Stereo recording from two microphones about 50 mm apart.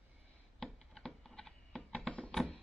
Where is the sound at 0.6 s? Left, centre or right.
Centre.